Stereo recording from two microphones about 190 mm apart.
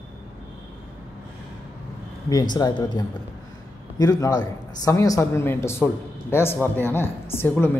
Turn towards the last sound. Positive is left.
turn(degrees=10)  # may be behind; listen again after turning